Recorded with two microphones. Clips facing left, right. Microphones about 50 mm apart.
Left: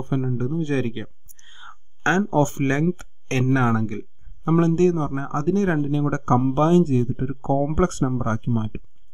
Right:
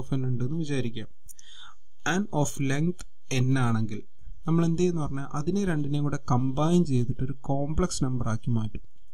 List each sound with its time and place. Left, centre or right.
0.0 s speech: left